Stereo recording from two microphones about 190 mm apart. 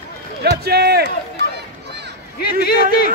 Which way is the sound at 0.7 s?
60° right (ahead or behind).